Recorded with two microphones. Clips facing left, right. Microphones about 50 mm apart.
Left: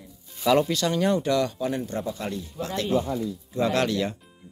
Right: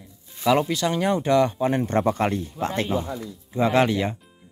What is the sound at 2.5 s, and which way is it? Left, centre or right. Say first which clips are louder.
Speech: right 4 dB; right.